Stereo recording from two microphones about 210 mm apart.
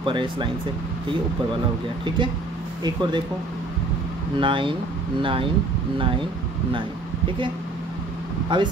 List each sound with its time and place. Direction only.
0.0 s speech: 25° right (ahead or behind)
2.0 s speech: 25° right (ahead or behind)
4.4 s speech: 25° right (ahead or behind)
8.5 s speech: 20° right (ahead or behind)